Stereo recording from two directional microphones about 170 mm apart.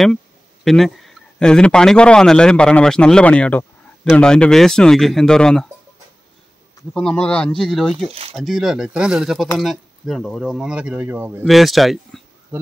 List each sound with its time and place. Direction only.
0.7 s speech: centre (ahead or behind)
6.9 s speech: 5° left (ahead or behind)
8.1 s speech: 35° right (ahead or behind)
8.4 s speech: centre (ahead or behind)
11.4 s speech: centre (ahead or behind)